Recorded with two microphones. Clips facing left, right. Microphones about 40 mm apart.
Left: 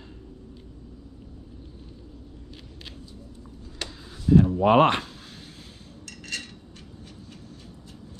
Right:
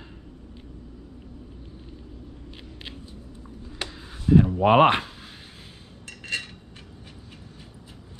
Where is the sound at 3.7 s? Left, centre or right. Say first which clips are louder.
Right 2 dB; centre.